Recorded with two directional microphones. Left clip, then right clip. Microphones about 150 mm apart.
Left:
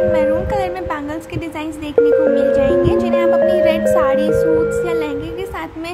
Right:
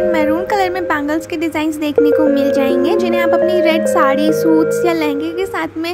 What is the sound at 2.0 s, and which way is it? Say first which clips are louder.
Speech: even; 5° right (ahead or behind).